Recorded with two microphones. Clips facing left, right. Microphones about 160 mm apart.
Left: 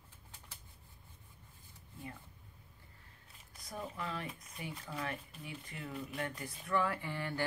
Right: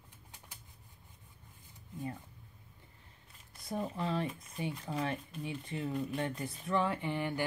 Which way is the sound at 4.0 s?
30° right (ahead or behind).